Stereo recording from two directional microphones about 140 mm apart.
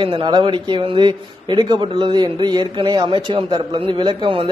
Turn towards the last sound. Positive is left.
turn(degrees=-40)  # may be behind; listen again after turning